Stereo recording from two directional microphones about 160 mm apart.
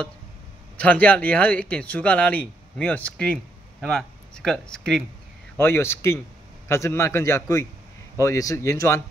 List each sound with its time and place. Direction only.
0.7 s speech: 10° left (ahead or behind)
5.6 s speech: 15° left (ahead or behind)